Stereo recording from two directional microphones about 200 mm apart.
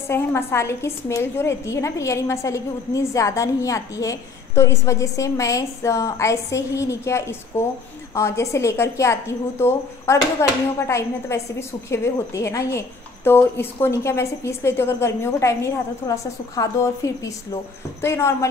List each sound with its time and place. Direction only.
0.1 s a woman's voice: 10° left (ahead or behind)